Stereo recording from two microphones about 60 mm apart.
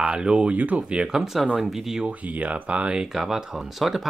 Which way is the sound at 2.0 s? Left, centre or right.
Right.